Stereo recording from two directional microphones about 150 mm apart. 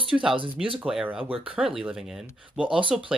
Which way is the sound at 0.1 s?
Centre (ahead or behind).